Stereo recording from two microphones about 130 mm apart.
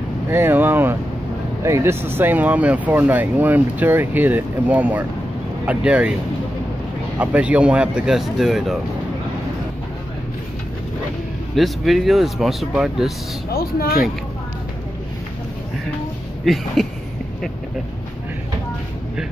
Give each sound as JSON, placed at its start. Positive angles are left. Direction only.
{"t": 0.3, "sound": "speech", "side_deg": -15}
{"t": 7.2, "sound": "speech", "side_deg": -10}
{"t": 11.5, "sound": "speech", "side_deg": 0}
{"t": 16.5, "sound": "speech", "side_deg": 0}